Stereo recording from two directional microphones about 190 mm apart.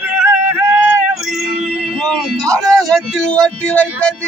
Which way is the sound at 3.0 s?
5° left (ahead or behind).